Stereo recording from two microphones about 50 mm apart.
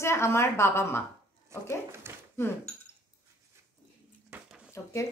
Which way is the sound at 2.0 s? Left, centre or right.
Right.